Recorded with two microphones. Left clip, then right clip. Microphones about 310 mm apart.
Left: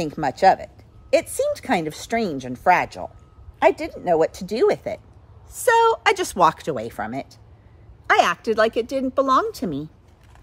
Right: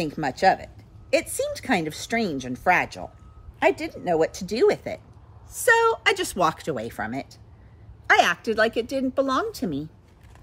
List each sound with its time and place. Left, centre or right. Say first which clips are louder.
0.0 s speech: left 4 dB; centre